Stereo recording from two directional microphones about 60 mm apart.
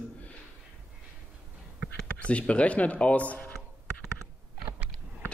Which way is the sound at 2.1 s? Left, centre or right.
Centre.